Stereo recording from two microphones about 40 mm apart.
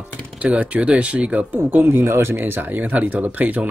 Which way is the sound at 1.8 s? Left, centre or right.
Right.